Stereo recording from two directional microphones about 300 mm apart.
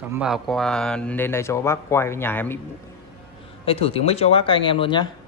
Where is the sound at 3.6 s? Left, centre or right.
Centre.